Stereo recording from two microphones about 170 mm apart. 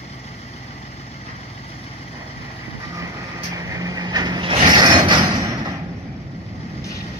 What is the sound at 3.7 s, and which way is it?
Vehicle, 20° right (ahead or behind).